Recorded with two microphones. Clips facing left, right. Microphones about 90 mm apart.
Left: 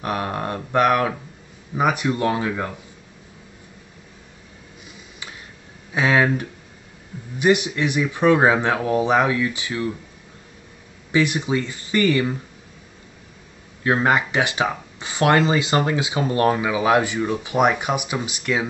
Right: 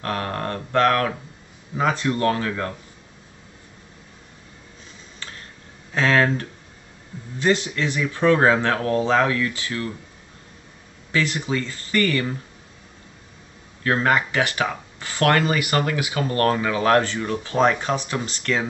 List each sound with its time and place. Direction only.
0.0 s speech: 15° left (ahead or behind)
5.2 s tick: 10° left (ahead or behind)
5.9 s speech: 10° left (ahead or behind)
11.1 s speech: 15° left (ahead or behind)
13.8 s speech: 20° left (ahead or behind)